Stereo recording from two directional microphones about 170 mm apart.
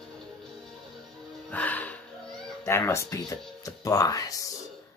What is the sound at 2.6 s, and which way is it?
Speech, 15° left (ahead or behind).